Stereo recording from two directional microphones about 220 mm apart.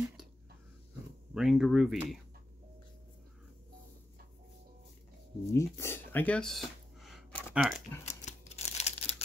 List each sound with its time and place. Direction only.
1.3 s speech: centre (ahead or behind)
5.5 s a sound: 15° left (ahead or behind)
7.5 s speech: centre (ahead or behind)
8.0 s tearing: 30° left (ahead or behind)